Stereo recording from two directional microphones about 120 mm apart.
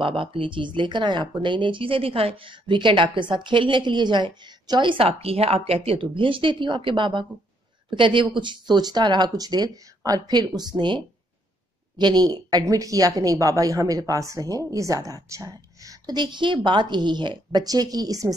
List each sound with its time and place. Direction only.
0.0 s a woman's voice: 50° right (ahead or behind)
12.0 s a woman's voice: 35° right (ahead or behind)